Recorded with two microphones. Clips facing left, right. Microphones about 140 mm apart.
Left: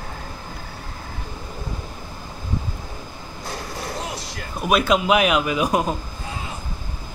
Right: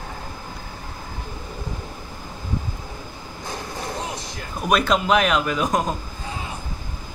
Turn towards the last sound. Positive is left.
turn(degrees=10)  # may be behind; listen again after turning